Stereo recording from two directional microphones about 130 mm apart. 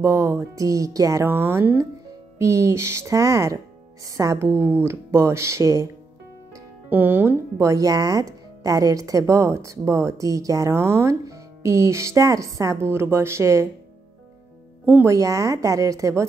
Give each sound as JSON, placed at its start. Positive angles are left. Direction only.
{"t": 0.0, "sound": "speech", "side_deg": -20}
{"t": 6.5, "sound": "speech", "side_deg": -15}
{"t": 14.9, "sound": "speech", "side_deg": -15}
{"t": 15.1, "sound": "speech", "side_deg": -25}